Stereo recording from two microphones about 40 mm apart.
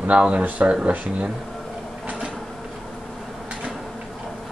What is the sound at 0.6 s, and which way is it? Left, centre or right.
Speech, right.